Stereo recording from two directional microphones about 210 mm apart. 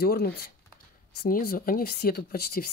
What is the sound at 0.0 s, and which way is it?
Speech, 45° left (ahead or behind).